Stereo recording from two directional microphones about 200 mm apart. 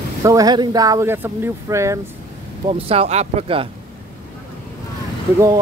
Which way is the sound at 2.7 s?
30° right (ahead or behind).